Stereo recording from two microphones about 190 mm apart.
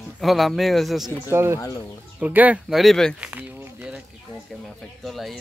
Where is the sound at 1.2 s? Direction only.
15° right (ahead or behind).